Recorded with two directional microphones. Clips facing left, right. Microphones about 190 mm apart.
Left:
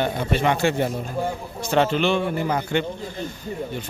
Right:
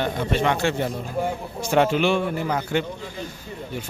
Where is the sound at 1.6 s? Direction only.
10° right (ahead or behind).